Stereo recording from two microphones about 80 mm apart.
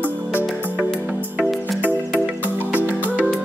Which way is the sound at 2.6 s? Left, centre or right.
Right.